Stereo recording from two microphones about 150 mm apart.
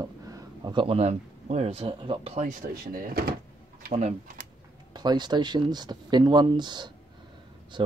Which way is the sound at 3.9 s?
45° right (ahead or behind).